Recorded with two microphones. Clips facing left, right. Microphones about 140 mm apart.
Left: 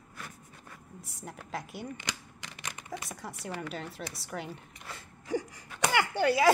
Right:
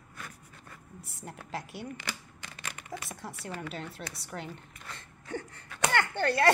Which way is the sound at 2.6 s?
15° left (ahead or behind).